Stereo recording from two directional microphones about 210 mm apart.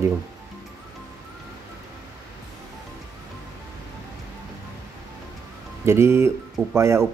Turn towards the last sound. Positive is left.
turn(degrees=-15)  # may be behind; listen again after turning